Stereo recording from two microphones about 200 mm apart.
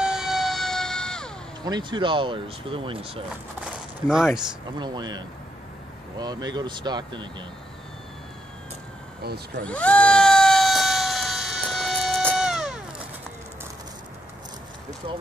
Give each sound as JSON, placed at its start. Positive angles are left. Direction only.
{"t": 0.0, "sound": "emergency vehicle", "side_deg": -5}
{"t": 1.6, "sound": "speech", "side_deg": -20}
{"t": 3.6, "sound": "a sound", "side_deg": -5}
{"t": 4.7, "sound": "speech", "side_deg": -20}
{"t": 9.2, "sound": "speech", "side_deg": -50}
{"t": 9.7, "sound": "a sound", "side_deg": 5}
{"t": 15.0, "sound": "speech", "side_deg": -25}